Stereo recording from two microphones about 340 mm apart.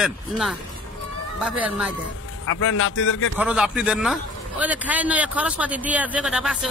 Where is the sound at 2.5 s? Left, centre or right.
Left.